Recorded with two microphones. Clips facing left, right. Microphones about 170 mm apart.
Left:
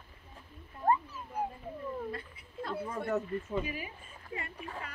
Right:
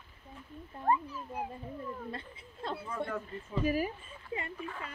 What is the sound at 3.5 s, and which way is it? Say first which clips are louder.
Speech: right 8 dB; 40° right (ahead or behind).